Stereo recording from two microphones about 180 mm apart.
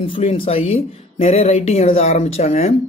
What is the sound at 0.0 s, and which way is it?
Speech, 30° left (ahead or behind).